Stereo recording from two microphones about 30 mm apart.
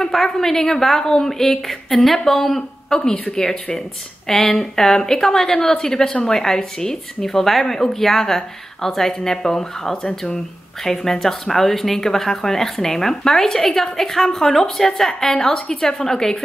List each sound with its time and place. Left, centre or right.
0.1 s a woman's voice: centre
2.9 s a woman's voice: left
4.3 s a woman's voice: centre
10.0 s speech: left
10.8 s a woman's voice: centre